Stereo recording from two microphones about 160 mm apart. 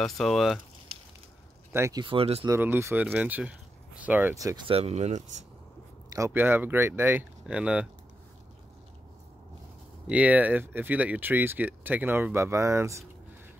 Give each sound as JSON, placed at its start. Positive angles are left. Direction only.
{"t": 0.0, "sound": "speech", "side_deg": 0}
{"t": 1.7, "sound": "speech", "side_deg": -20}
{"t": 2.4, "sound": "speech", "side_deg": -15}
{"t": 4.6, "sound": "speech", "side_deg": -40}
{"t": 6.1, "sound": "speech", "side_deg": -15}
{"t": 10.0, "sound": "speech", "side_deg": -10}